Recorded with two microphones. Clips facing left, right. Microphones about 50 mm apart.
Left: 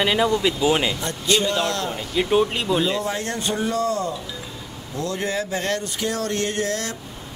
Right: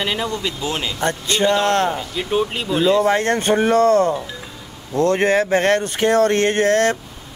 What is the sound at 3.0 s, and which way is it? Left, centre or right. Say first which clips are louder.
Speech: right 9 dB; right.